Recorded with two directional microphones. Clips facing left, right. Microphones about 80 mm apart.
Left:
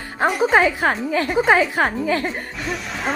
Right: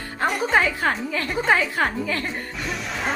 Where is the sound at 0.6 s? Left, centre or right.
Centre.